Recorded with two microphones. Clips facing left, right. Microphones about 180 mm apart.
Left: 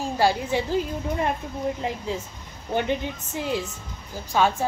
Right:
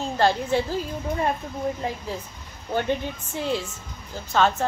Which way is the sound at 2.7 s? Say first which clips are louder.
Even; 15° left (ahead or behind).